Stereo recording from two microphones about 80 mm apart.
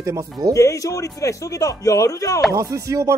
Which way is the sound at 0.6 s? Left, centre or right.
Left.